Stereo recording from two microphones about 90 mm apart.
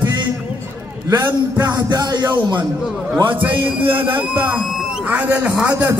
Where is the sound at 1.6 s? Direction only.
45° right (ahead or behind).